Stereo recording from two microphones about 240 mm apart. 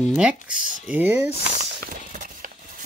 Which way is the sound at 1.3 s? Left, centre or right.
Right.